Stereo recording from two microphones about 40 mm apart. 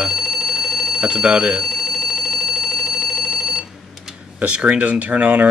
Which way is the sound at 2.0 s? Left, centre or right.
Centre.